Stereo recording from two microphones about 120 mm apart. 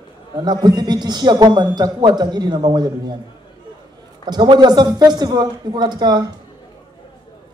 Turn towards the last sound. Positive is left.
turn(degrees=-35)  # may be behind; listen again after turning